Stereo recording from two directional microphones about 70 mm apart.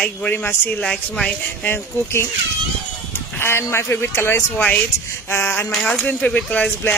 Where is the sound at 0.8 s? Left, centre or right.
Centre.